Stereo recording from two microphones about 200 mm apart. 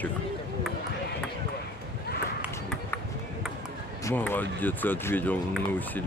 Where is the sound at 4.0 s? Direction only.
10° left (ahead or behind).